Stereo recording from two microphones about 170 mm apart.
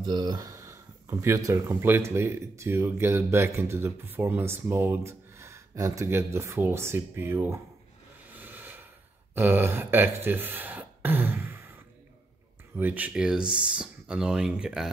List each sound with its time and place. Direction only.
0.0 s speech: 25° right (ahead or behind)
8.3 s a sound: 10° right (ahead or behind)
9.3 s speech: 10° right (ahead or behind)
12.7 s speech: 10° right (ahead or behind)